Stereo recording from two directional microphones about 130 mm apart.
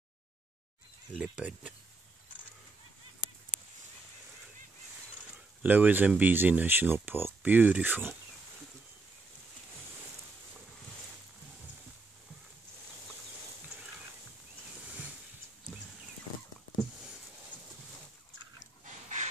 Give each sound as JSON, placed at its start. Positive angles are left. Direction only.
{"t": 1.1, "sound": "speech", "side_deg": -5}
{"t": 5.6, "sound": "speech", "side_deg": -15}
{"t": 18.9, "sound": "a sound", "side_deg": -65}